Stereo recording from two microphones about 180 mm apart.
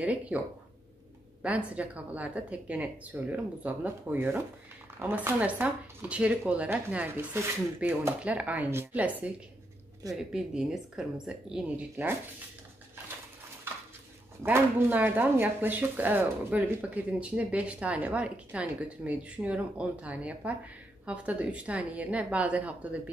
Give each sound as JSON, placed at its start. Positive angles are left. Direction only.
{"t": 0.0, "sound": "speech", "side_deg": -10}
{"t": 1.4, "sound": "speech", "side_deg": -5}
{"t": 10.3, "sound": "speech", "side_deg": -5}
{"t": 14.4, "sound": "speech", "side_deg": -10}